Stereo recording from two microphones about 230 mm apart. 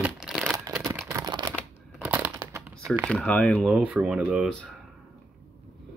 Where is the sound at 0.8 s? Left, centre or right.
Centre.